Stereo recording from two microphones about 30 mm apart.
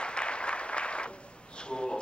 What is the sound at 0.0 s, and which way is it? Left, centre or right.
Applause, left.